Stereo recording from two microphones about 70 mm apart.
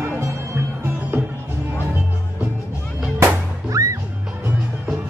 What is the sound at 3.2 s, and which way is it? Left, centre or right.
Music, right.